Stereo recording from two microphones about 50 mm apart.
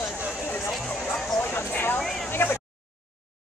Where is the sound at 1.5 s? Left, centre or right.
Left.